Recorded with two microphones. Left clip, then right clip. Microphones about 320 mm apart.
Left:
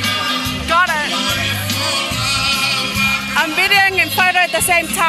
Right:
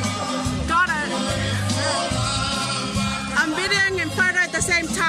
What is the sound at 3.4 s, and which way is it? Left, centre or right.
Music, centre.